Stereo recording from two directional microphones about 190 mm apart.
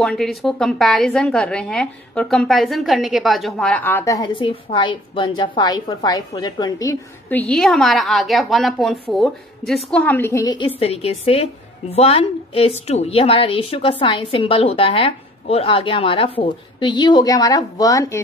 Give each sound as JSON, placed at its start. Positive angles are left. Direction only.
{"t": 0.0, "sound": "a woman's voice", "side_deg": 0}
{"t": 10.8, "sound": "a woman's voice", "side_deg": 30}